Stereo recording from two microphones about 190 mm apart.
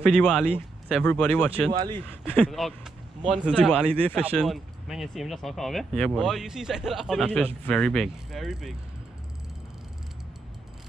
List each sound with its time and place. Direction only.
0.0 s speech: 5° left (ahead or behind)
1.7 s speech: 25° right (ahead or behind)
2.2 s speech: 5° left (ahead or behind)